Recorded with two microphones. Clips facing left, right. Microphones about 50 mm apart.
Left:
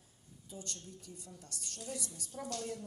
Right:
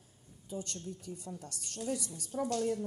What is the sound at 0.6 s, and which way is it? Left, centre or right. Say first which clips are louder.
Speech: right 6 dB; right.